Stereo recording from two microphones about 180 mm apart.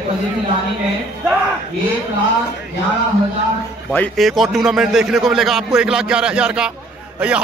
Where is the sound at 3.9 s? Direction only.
5° left (ahead or behind).